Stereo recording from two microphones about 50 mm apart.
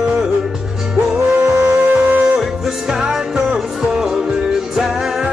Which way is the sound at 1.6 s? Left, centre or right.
Right.